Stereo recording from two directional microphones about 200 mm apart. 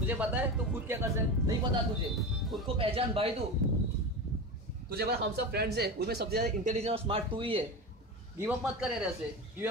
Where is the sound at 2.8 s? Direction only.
30° right (ahead or behind).